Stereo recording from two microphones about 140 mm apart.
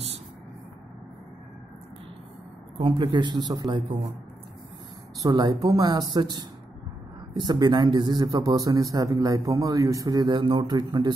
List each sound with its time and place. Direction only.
2.8 s speech: 35° right (ahead or behind)
5.2 s a man's voice: 25° right (ahead or behind)